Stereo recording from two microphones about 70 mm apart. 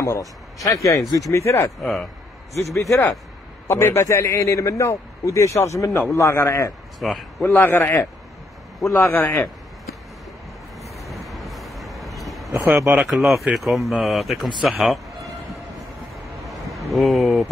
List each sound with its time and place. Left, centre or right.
0.0 s speech: left
0.7 s a man's voice: left
1.8 s speech: centre
2.8 s a man's voice: left
3.6 s a man's voice: left
7.0 s speech: centre
7.5 s a man's voice: left
8.8 s a man's voice: left
9.1 s a man's voice: left
11.1 s vehicle: centre
13.0 s speech: centre
16.4 s a sound: centre